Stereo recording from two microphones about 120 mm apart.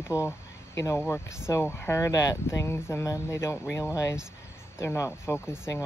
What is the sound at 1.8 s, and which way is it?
Speech, 25° left (ahead or behind).